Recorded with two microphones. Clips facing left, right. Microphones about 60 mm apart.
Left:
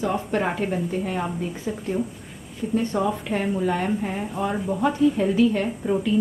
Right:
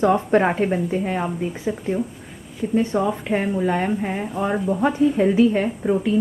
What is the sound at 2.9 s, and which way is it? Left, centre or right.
A woman's voice, centre.